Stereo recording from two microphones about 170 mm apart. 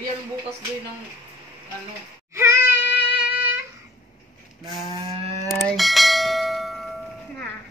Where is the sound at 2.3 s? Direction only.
15° right (ahead or behind).